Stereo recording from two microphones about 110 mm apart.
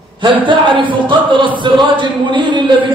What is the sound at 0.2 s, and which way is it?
Speech, 45° right (ahead or behind).